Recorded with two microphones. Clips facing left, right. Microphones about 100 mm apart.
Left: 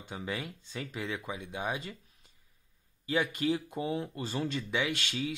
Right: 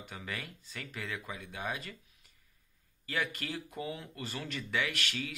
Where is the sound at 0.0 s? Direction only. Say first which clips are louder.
Left 5 dB; 25° left (ahead or behind).